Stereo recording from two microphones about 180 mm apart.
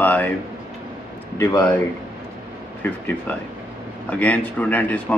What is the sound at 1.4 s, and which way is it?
Speech, 20° left (ahead or behind).